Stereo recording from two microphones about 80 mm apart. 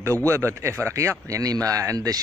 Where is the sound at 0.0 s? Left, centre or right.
Right.